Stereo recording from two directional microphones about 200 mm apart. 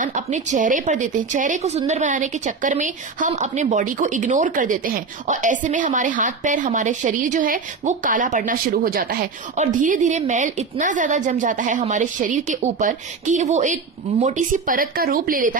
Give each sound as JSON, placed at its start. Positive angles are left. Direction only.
{"t": 0.0, "sound": "speech", "side_deg": -40}